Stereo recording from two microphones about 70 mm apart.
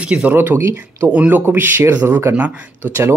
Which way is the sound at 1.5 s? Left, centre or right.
Right.